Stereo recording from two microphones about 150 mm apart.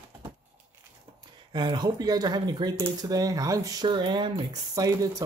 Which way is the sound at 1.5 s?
30° right (ahead or behind).